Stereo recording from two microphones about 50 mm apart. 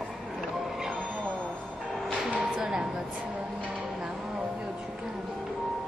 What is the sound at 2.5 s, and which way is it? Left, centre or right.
Chopping, centre.